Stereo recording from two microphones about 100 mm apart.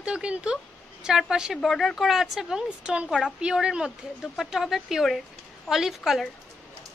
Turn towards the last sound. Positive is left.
turn(degrees=-5)  # may be behind; listen again after turning